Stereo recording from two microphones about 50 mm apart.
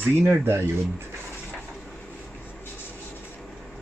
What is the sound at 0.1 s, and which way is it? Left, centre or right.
Speech, right.